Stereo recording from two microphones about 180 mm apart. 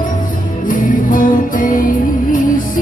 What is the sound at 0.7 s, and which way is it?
Music, 50° left (ahead or behind).